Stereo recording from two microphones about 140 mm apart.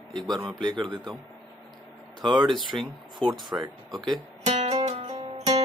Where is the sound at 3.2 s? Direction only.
10° left (ahead or behind).